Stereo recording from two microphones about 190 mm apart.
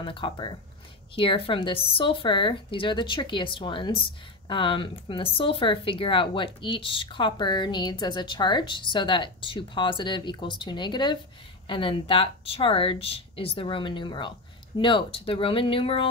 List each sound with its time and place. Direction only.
0.0 s speech: 25° left (ahead or behind)